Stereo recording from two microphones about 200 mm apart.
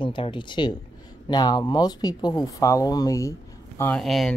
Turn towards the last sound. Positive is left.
turn(degrees=0)  # may be behind; listen again after turning